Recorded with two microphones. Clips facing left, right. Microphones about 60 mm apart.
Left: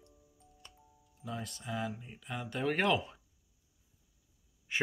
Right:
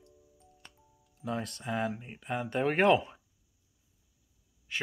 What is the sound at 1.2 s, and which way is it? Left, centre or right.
Speech, right.